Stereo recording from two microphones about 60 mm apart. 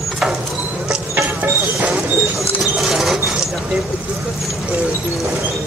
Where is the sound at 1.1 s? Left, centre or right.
Right.